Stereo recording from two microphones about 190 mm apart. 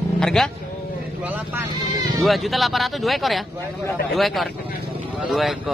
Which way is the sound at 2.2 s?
Centre (ahead or behind).